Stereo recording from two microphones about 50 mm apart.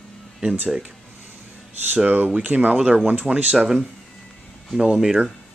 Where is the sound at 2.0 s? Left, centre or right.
Right.